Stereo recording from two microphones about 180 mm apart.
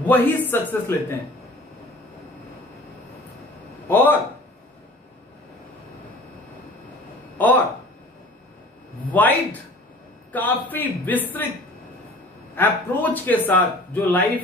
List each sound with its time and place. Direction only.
0.0 s speech: 10° left (ahead or behind)
3.9 s speech: 10° left (ahead or behind)
7.3 s speech: 10° left (ahead or behind)
9.1 s speech: 10° left (ahead or behind)
12.5 s speech: 10° left (ahead or behind)